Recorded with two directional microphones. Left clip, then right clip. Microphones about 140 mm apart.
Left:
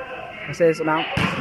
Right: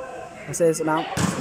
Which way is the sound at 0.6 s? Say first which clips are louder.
Left 2 dB; 15° right (ahead or behind).